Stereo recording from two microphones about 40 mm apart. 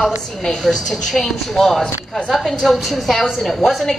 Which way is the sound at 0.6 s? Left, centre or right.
Centre.